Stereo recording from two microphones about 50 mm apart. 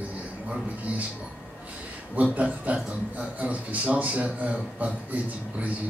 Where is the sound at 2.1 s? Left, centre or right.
Right.